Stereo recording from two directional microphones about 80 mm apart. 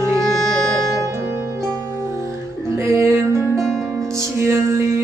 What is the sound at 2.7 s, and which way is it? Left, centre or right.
Music, right.